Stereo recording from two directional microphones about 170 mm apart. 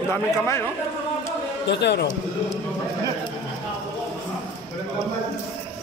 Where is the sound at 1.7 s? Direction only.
90° left.